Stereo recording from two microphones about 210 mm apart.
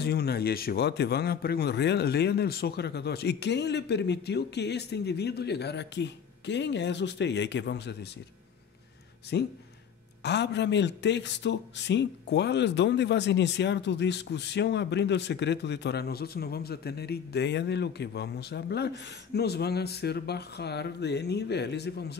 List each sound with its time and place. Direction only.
0.0 s speech: 50° left (ahead or behind)
9.3 s a man's voice: 50° left (ahead or behind)